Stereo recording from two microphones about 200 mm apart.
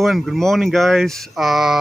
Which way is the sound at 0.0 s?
Centre (ahead or behind).